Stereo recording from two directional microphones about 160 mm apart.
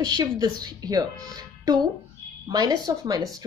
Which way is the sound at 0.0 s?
25° right (ahead or behind).